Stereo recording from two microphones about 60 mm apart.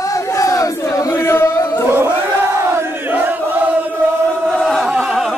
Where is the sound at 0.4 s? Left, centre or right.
Left.